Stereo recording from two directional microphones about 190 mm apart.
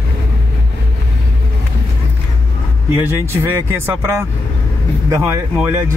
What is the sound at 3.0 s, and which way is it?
Speech, 10° right (ahead or behind).